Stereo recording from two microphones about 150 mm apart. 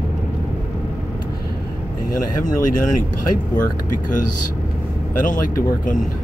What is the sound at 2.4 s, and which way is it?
Speech, 60° left (ahead or behind).